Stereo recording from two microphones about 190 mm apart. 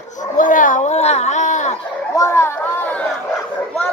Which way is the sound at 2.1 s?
15° left (ahead or behind).